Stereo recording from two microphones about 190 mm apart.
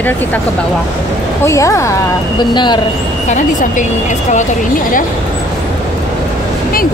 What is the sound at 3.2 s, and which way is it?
Speech, 40° left (ahead or behind).